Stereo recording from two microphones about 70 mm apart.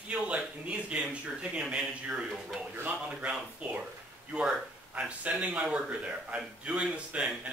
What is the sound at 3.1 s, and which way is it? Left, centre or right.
Speech, centre.